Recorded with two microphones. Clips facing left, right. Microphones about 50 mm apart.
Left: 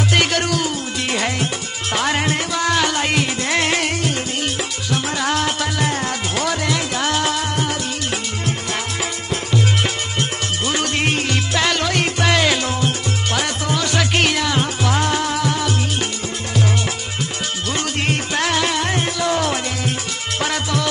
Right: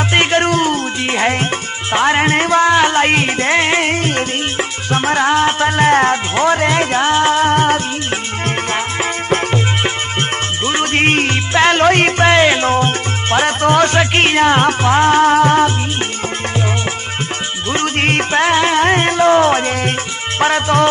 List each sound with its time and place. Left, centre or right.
0.1 s music: right
10.6 s music: right
13.9 s music: right
14.8 s music: right
17.7 s music: right
18.4 s music: right